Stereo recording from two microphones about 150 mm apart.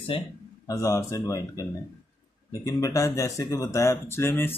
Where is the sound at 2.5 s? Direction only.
20° left (ahead or behind).